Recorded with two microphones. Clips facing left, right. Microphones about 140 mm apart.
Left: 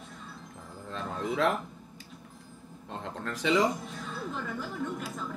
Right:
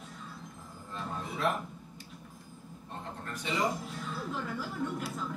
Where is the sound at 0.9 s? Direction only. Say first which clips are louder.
Left 7 dB; 90° left.